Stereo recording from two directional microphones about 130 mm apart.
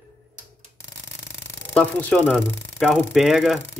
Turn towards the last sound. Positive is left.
turn(degrees=0)  # may be behind; listen again after turning